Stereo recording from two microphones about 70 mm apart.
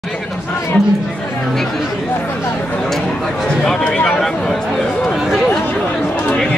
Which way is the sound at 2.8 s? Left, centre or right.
Centre.